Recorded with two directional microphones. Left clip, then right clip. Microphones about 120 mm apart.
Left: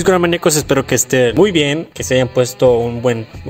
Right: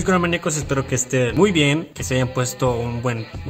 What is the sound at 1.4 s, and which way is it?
Speech, 50° left (ahead or behind).